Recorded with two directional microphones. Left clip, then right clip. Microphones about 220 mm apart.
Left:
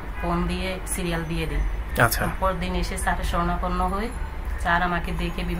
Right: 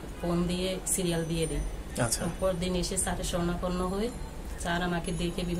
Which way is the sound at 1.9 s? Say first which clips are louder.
Left 11 dB; 30° left (ahead or behind).